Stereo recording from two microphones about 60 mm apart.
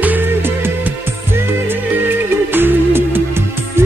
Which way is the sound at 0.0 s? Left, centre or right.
Right.